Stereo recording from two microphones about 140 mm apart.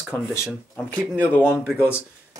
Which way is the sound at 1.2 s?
15° left (ahead or behind).